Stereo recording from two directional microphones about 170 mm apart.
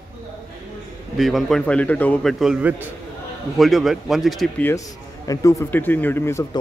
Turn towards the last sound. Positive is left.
turn(degrees=15)  # may be behind; listen again after turning